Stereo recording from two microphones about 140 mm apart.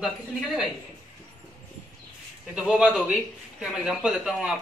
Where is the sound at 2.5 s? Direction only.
5° right (ahead or behind).